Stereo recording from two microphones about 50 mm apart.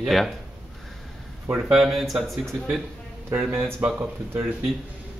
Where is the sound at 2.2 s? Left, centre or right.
Centre.